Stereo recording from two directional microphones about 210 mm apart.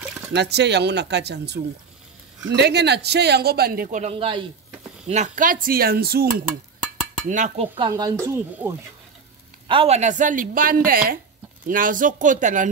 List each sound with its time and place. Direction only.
0.3 s a man's voice: 55° right (ahead or behind)
7.2 s speech: 35° right (ahead or behind)
7.7 s speech: 20° right (ahead or behind)
9.7 s speech: 30° right (ahead or behind)